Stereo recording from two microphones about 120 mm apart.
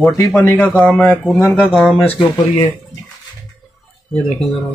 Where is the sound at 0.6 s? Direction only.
10° left (ahead or behind).